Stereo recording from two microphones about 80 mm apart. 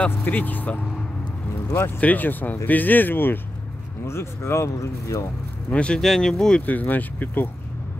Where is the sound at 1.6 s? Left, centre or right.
Left.